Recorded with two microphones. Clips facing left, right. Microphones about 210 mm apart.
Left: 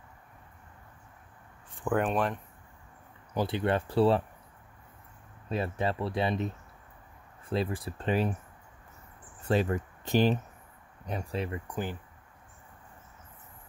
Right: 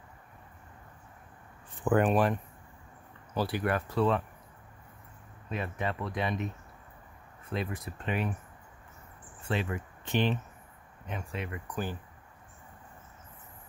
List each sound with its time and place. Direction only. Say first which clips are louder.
1.8 s speech: right 3 dB; centre (ahead or behind)
3.3 s speech: left 2 dB; 25° left (ahead or behind)
5.5 s speech: left 4 dB; 30° left (ahead or behind)
9.4 s speech: left 6 dB; 40° left (ahead or behind); by 12.0 s 20° left (ahead or behind)